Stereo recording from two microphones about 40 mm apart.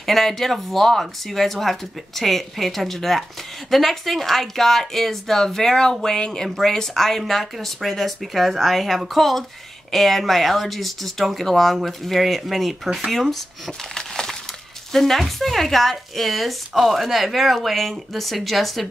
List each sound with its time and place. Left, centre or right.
0.0 s a woman's voice: centre
13.9 s crumpling: centre
14.9 s speech: centre